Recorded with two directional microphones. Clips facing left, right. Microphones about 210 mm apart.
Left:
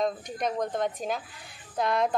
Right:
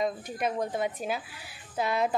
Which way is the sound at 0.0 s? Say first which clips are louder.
Left 1 dB; 5° right (ahead or behind).